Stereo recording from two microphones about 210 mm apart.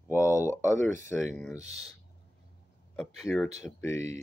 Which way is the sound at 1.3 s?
10° left (ahead or behind).